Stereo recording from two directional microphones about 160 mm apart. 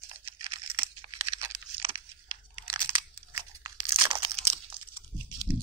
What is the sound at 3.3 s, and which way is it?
Crunch, 25° right (ahead or behind).